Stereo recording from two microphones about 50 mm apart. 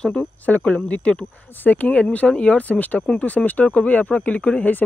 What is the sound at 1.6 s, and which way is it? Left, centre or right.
Speech, left.